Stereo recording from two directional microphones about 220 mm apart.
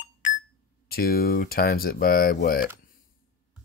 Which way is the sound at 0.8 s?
40° left (ahead or behind).